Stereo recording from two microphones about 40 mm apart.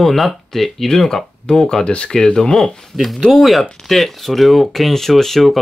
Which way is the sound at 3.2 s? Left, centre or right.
Centre.